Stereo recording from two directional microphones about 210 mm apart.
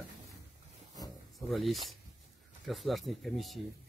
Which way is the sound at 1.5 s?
Centre (ahead or behind).